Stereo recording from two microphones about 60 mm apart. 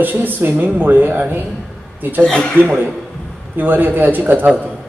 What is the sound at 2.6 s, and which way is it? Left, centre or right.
A man's voice, right.